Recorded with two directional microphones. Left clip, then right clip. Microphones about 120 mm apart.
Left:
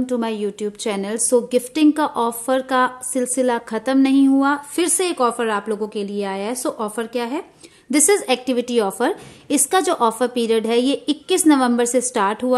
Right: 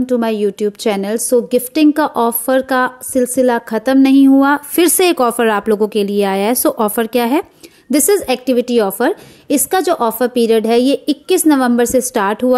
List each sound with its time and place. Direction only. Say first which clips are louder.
0.0 s a woman's voice: right 7 dB; 40° right (ahead or behind)
4.4 s a woman's voice: right 7 dB; 60° right (ahead or behind)
7.9 s a woman's voice: right 4 dB; 30° right (ahead or behind)